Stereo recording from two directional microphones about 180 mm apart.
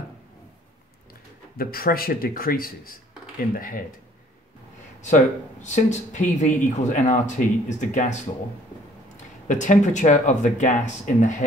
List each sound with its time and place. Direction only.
1.6 s speech: 55° left (ahead or behind)
5.0 s speech: 40° left (ahead or behind)